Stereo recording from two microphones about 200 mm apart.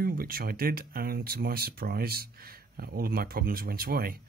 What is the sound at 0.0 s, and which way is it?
Speech, 45° right (ahead or behind).